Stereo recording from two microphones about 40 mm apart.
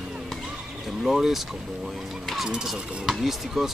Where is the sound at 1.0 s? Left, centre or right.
Centre.